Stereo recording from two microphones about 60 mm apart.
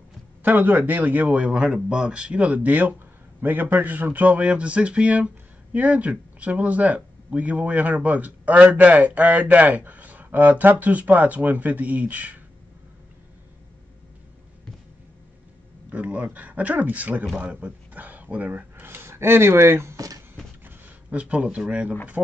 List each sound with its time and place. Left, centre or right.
0.4 s a man's voice: right
15.9 s a man's voice: right
17.4 s a sound: right
19.0 s speech: right
20.0 s speech: right
20.6 s speech: right